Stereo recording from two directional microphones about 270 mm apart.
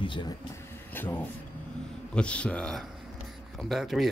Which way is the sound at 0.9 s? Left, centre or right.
Centre.